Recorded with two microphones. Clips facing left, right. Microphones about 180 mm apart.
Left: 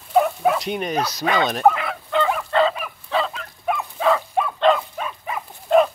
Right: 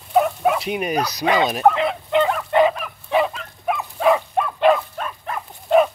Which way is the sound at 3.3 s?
Centre (ahead or behind).